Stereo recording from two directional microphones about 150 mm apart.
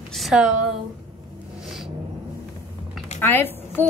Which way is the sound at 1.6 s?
5° right (ahead or behind).